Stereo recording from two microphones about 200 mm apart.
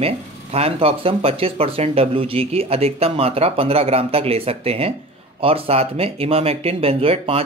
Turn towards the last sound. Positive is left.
turn(degrees=-30)  # may be behind; listen again after turning